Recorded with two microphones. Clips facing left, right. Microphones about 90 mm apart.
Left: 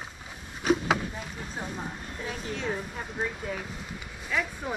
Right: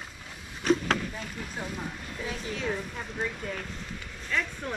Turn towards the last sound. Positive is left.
turn(degrees=10)  # may be behind; listen again after turning